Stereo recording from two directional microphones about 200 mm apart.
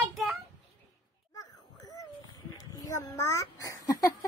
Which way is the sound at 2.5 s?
15° left (ahead or behind).